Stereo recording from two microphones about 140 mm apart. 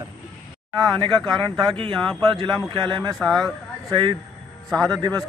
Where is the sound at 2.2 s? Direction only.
35° right (ahead or behind).